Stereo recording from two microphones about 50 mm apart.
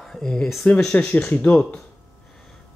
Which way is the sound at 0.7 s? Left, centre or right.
Left.